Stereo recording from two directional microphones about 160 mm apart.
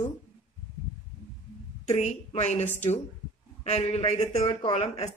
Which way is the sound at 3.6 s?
40° left (ahead or behind).